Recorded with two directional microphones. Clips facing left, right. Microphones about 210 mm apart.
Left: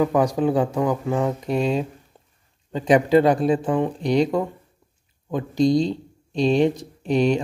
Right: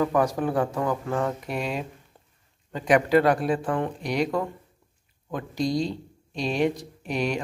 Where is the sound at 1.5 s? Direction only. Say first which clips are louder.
Left 8 dB; 25° left (ahead or behind).